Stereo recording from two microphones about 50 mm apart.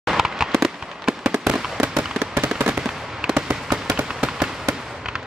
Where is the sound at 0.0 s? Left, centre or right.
Centre.